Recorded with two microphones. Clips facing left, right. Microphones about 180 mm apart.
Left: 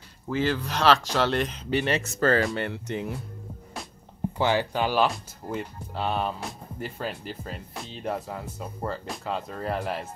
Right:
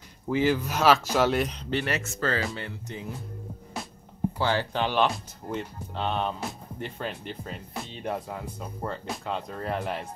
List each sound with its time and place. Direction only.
0.3 s speech: 10° right (ahead or behind)
1.9 s speech: 30° left (ahead or behind)
2.1 s speech: 50° left (ahead or behind); by 3.1 s 65° left (ahead or behind)
4.4 s speech: 15° left (ahead or behind)